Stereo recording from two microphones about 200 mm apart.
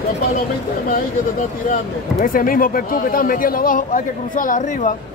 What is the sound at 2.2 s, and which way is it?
Speech, 45° left (ahead or behind).